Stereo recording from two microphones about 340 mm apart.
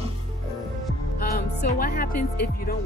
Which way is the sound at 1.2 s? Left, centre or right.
Left.